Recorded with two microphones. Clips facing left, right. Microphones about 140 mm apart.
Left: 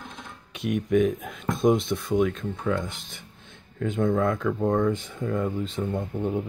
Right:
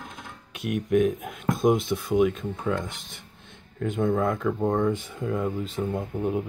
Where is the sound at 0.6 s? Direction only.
5° right (ahead or behind).